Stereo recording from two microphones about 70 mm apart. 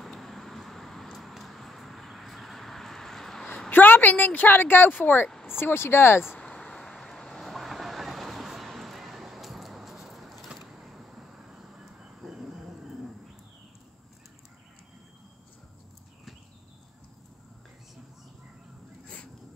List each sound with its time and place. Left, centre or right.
0.0 s vehicle: centre
3.7 s speech: left
6.4 s vehicle: centre